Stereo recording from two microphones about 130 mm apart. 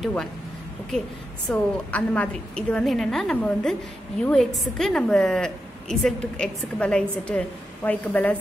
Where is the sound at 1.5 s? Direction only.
10° left (ahead or behind).